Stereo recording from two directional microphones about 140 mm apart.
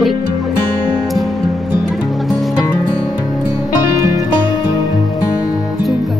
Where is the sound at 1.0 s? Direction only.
Centre (ahead or behind).